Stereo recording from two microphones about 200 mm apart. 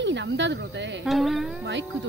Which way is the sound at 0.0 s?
65° right (ahead or behind).